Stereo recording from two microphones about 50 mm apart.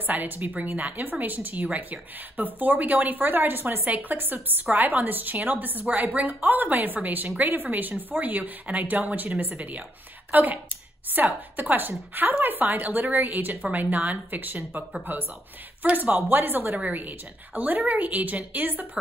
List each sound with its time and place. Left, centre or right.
0.0 s a woman's voice: right